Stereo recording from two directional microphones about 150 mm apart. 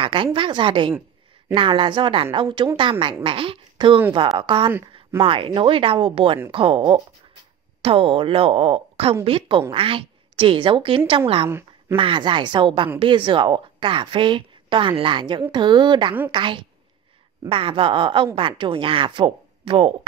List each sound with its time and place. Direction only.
0.0 s a woman's voice: 35° right (ahead or behind)
11.4 s speech: 15° right (ahead or behind)
12.0 s a woman's voice: 30° right (ahead or behind)